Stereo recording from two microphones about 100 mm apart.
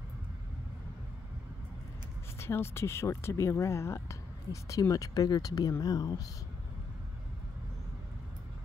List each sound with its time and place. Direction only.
2.3 s speech: 25° left (ahead or behind)